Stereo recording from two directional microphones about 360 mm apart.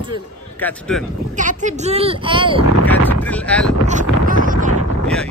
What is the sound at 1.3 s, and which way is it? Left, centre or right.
Speech, right.